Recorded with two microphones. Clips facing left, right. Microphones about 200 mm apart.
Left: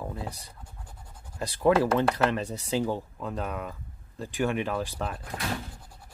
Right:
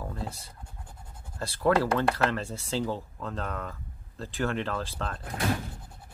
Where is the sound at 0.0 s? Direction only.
15° left (ahead or behind).